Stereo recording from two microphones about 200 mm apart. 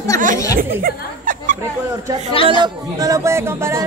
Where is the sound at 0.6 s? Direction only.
45° right (ahead or behind).